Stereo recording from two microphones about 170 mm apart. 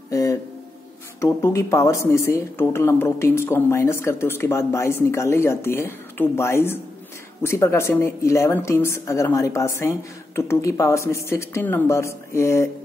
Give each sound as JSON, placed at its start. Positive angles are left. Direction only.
{"t": 0.1, "sound": "music", "side_deg": 20}
{"t": 1.2, "sound": "a woman's voice", "side_deg": 15}